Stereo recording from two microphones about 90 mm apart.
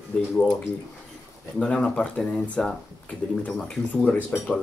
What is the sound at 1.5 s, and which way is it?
Speech, 5° left (ahead or behind).